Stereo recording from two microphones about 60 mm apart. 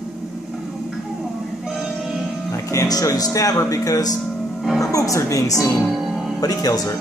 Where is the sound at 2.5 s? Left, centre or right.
Left.